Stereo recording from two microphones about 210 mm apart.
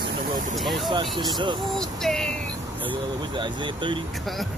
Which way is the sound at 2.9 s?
20° right (ahead or behind).